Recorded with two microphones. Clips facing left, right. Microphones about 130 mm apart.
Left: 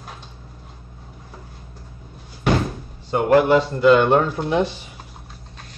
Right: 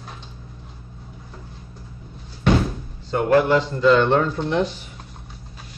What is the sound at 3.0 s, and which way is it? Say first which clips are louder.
Speech: left 2 dB; 15° left (ahead or behind).